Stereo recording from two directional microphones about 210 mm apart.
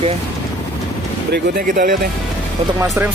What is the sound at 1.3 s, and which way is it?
Speech, 40° right (ahead or behind).